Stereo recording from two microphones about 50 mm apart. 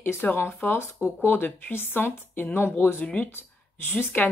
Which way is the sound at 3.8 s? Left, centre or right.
Left.